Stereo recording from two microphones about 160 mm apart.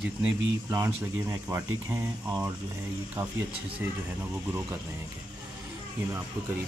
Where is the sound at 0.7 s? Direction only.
15° right (ahead or behind).